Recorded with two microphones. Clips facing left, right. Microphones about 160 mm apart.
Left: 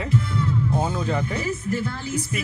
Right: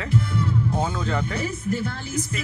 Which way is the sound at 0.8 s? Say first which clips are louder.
Left 1 dB; 10° left (ahead or behind).